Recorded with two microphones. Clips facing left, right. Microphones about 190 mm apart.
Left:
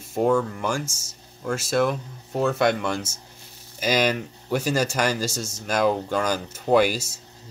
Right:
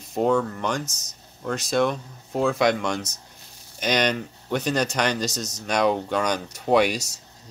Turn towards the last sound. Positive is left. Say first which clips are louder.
# left 1 dB
turn(degrees=0)  # may be behind; listen again after turning